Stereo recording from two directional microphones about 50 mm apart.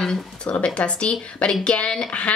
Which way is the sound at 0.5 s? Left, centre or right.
Left.